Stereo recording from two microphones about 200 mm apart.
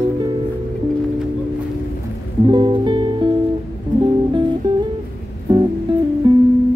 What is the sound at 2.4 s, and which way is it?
Music, 20° right (ahead or behind).